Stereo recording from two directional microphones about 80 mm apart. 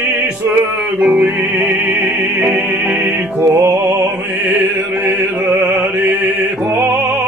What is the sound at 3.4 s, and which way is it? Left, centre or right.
Music, right.